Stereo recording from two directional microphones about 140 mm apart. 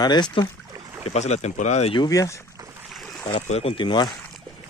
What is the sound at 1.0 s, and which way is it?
Speech, 50° left (ahead or behind).